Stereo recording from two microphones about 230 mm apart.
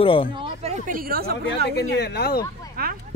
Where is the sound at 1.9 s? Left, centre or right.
Left.